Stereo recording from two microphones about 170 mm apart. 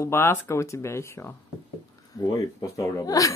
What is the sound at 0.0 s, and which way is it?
Speech, 15° left (ahead or behind).